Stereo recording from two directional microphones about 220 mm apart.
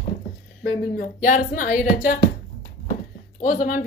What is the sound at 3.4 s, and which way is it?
Speech, 35° left (ahead or behind).